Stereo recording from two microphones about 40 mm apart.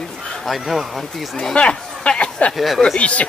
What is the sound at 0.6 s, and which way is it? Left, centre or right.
Speech, centre.